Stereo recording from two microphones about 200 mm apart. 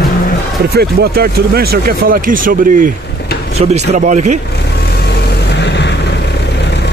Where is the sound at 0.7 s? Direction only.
50° right (ahead or behind).